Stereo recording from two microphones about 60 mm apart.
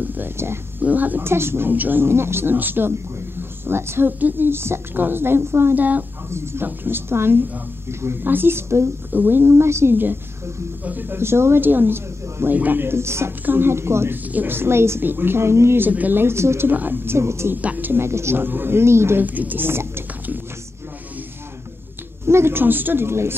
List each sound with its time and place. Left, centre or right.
0.0 s speech: right
1.2 s speech: right
5.8 s speech: right
6.3 s a woman's voice: right
9.1 s speech: right
10.9 s a woman's voice: right
14.3 s speech: right
15.8 s speech: right
16.7 s speech: right
17.6 s speech: right
18.0 s a woman's voice: right
18.4 s speech: right
19.2 s speech: right
22.3 s speech: right